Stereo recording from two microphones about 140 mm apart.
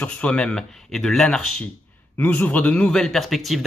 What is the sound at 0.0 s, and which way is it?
A man's voice, 10° left (ahead or behind).